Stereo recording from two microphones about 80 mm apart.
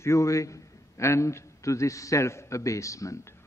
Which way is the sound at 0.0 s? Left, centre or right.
Left.